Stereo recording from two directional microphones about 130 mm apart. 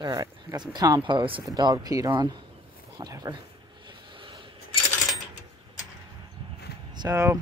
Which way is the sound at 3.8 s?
40° right (ahead or behind).